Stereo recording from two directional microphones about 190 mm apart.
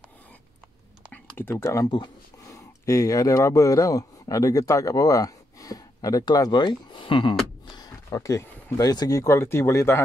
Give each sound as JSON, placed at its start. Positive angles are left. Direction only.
{"t": 1.1, "sound": "a man's voice", "side_deg": 10}